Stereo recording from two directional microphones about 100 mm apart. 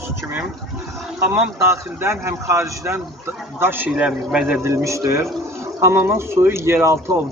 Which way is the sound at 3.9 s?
10° right (ahead or behind).